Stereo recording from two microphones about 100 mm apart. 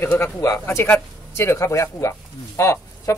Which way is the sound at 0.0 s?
25° left (ahead or behind).